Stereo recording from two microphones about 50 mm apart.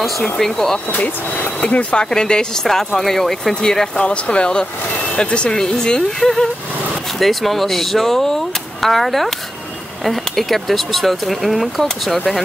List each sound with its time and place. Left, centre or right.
0.4 s speech: centre
0.9 s speech: left
2.0 s speech: centre
4.0 s speech: left; by 12.2 s centre